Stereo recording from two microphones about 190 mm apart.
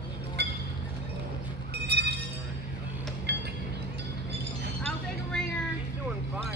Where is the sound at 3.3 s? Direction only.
60° right (ahead or behind).